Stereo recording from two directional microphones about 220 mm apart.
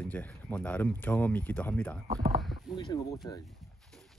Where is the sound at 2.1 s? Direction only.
15° right (ahead or behind).